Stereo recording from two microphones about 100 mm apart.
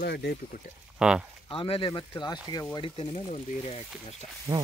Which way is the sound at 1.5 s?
60° left (ahead or behind).